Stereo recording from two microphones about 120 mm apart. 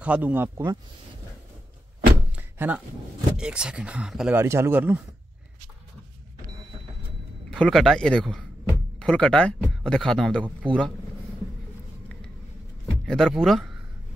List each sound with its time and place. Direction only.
0.0 s speech: 15° right (ahead or behind)
2.3 s door: 10° right (ahead or behind)
3.3 s speech: 5° right (ahead or behind)
4.3 s speech: 20° right (ahead or behind)
7.5 s speech: 5° left (ahead or behind)
13.0 s speech: 5° left (ahead or behind)